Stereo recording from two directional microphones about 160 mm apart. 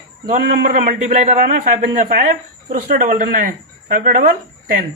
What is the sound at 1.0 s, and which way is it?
A man's voice, 45° right (ahead or behind).